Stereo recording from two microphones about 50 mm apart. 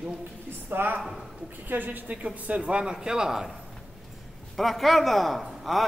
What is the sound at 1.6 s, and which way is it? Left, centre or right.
Speech, right.